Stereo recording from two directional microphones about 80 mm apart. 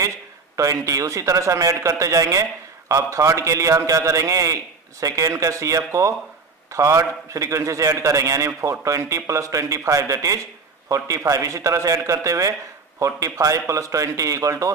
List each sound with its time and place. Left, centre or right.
0.6 s a man's voice: right